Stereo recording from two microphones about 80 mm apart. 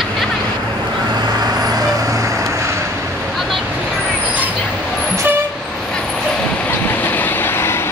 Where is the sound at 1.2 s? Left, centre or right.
Right.